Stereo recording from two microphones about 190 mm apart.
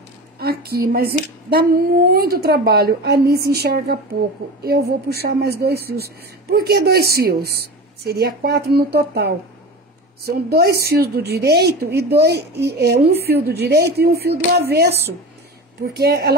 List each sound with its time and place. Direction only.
0.4 s a woman's voice: 55° right (ahead or behind)
15.8 s a woman's voice: 55° right (ahead or behind)